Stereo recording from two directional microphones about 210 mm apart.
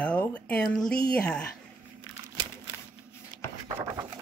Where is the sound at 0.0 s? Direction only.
5° left (ahead or behind).